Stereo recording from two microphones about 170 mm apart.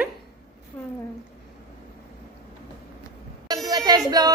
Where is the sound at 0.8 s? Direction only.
10° left (ahead or behind).